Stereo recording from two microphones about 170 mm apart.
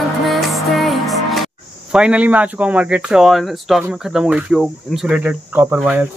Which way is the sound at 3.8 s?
5° right (ahead or behind).